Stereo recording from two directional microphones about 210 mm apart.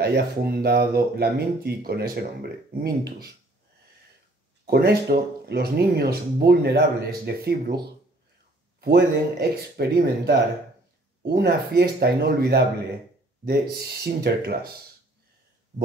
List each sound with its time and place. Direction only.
0.0 s speech: 45° right (ahead or behind)
4.6 s speech: 50° right (ahead or behind)
8.8 s speech: 50° right (ahead or behind)